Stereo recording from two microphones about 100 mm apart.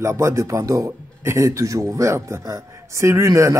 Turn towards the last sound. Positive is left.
turn(degrees=-30)  # may be behind; listen again after turning